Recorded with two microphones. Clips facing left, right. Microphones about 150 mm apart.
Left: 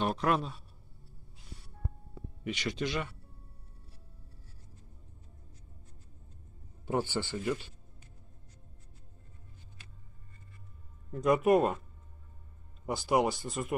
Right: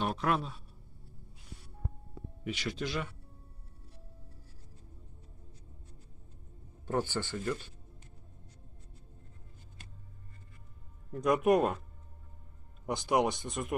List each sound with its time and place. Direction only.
0.0 s a man's voice: centre (ahead or behind)
2.4 s speech: 5° right (ahead or behind)
6.9 s speech: 10° left (ahead or behind)
11.1 s speech: centre (ahead or behind)
12.8 s speech: 5° left (ahead or behind)